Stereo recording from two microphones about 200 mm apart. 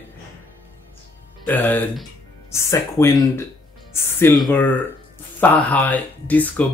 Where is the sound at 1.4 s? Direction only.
10° left (ahead or behind).